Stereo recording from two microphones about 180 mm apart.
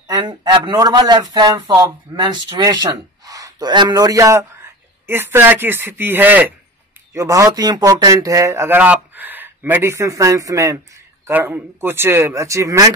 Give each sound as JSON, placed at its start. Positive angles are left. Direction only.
{"t": 0.1, "sound": "speech", "side_deg": -25}